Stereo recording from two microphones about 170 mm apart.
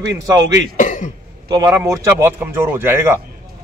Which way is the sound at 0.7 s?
50° left (ahead or behind).